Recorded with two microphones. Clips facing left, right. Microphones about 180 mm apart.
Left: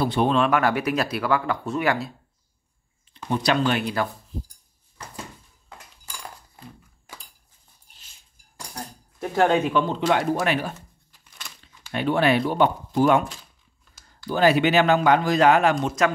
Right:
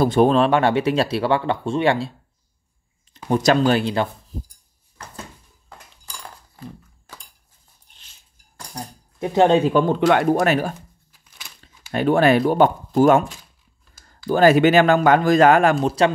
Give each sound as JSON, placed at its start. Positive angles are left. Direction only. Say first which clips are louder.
{"t": 0.0, "sound": "speech", "louder": "right 5 dB", "side_deg": -45}
{"t": 3.3, "sound": "speech", "louder": "right 5 dB", "side_deg": -45}
{"t": 5.7, "sound": "cutlery", "louder": "right 1 dB", "side_deg": 5}
{"t": 8.7, "sound": "speech", "louder": "right 4 dB", "side_deg": -15}
{"t": 9.8, "sound": "speech", "louder": "right 5 dB", "side_deg": -60}
{"t": 10.4, "sound": "speech", "louder": "right 5 dB", "side_deg": -45}